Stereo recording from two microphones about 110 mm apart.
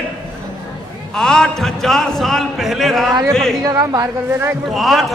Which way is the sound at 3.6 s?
35° right (ahead or behind).